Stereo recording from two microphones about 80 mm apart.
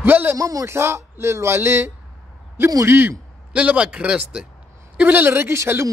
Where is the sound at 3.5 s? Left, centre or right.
Centre.